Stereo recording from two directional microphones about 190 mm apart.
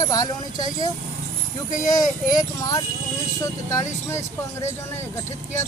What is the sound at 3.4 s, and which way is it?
Speech, 15° left (ahead or behind).